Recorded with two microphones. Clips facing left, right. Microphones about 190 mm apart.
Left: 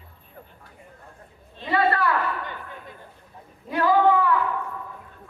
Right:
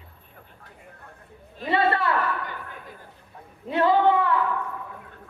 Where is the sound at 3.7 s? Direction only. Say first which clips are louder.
Right 1 dB; 25° right (ahead or behind).